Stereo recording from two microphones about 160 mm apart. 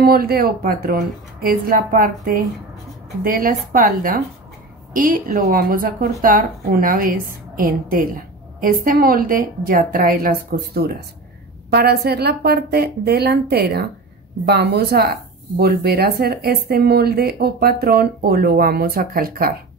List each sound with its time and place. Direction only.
0.0 s a woman's voice: 70° right (ahead or behind)